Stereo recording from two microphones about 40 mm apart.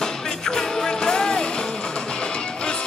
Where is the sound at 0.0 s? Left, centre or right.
Centre.